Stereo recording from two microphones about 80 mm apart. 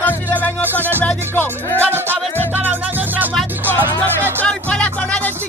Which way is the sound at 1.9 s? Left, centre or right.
Right.